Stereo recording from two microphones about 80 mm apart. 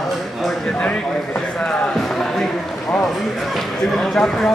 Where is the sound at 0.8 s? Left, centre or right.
Centre.